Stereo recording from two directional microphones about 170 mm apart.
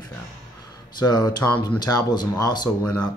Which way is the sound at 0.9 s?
25° left (ahead or behind).